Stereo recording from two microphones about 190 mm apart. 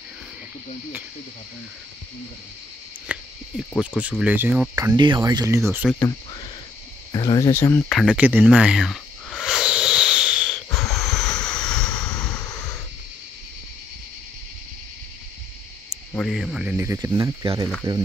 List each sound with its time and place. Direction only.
3.1 s speech: 5° right (ahead or behind)
4.2 s speech: 10° right (ahead or behind)
4.7 s speech: 20° right (ahead or behind)
5.9 s speech: 20° left (ahead or behind)
7.9 s a sound: centre (ahead or behind)
10.7 s a sound: 20° left (ahead or behind)
11.6 s vehicle: 5° left (ahead or behind)
12.2 s vehicle: 20° left (ahead or behind)
16.1 s speech: 5° left (ahead or behind); by 18.0 s 20° right (ahead or behind)